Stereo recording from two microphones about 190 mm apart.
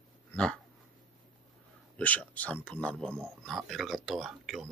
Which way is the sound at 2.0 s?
10° left (ahead or behind).